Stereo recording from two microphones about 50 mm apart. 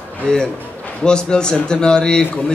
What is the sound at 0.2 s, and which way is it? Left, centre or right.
A man's voice, centre.